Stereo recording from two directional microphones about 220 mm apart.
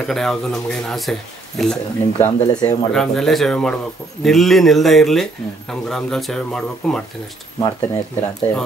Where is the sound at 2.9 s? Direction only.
Centre (ahead or behind).